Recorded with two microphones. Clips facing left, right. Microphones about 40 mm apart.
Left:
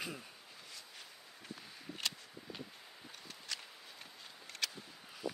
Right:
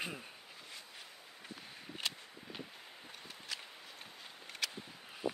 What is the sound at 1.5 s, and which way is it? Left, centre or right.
Walk, centre.